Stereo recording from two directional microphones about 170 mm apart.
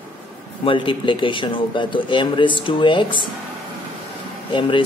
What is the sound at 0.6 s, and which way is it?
Speech, 30° left (ahead or behind).